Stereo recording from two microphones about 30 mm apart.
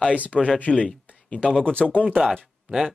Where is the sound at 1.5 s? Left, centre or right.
Left.